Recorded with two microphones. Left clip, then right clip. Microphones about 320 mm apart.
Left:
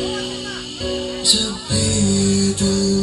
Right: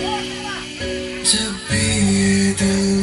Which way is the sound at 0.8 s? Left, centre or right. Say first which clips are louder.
Left 3 dB; left.